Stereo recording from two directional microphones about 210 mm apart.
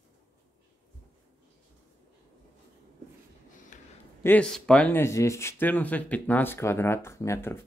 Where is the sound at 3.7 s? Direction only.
40° left (ahead or behind).